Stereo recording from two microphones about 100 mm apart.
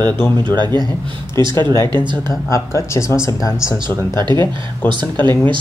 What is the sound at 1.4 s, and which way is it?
Speech, 30° left (ahead or behind).